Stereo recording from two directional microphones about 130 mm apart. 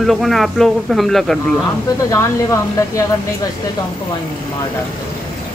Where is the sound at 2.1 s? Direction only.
25° left (ahead or behind).